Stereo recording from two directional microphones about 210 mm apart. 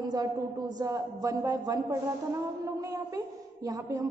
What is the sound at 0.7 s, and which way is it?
A woman's voice, 15° right (ahead or behind).